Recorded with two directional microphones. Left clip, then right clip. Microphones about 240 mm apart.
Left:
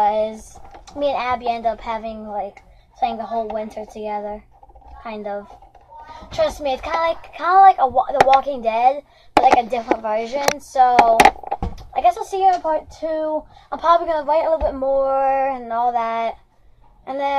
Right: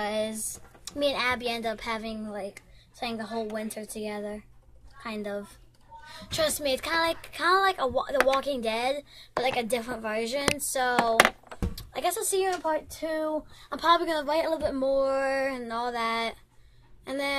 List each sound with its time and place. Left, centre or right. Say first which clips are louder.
0.0 s a sound: left 12 dB; right
0.9 s a child's voice: left 6 dB; right
6.6 s a child's voice: left 6 dB; right